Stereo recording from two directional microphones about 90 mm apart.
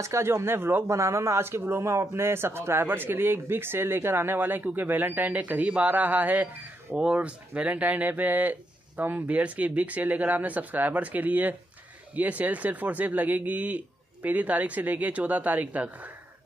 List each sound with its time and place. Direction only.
0.0 s speech: 30° right (ahead or behind)
0.9 s a man's voice: 35° right (ahead or behind); by 16.1 s 20° right (ahead or behind)